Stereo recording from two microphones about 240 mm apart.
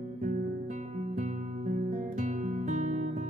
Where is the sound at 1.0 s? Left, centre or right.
Right.